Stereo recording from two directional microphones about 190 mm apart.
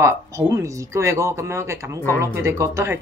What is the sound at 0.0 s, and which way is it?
Speech, 15° right (ahead or behind).